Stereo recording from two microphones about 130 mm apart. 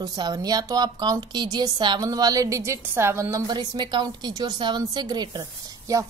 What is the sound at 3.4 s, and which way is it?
A woman's voice, 35° right (ahead or behind).